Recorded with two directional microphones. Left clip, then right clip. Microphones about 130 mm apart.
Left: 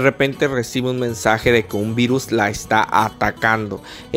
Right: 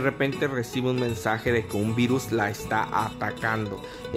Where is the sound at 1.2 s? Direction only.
50° left (ahead or behind).